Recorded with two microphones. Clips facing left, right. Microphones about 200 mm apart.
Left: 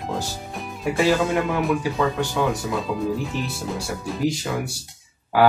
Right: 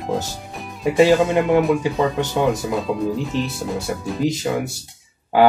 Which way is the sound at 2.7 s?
Centre (ahead or behind).